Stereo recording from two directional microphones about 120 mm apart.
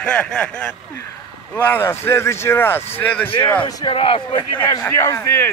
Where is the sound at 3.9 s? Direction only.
45° left (ahead or behind).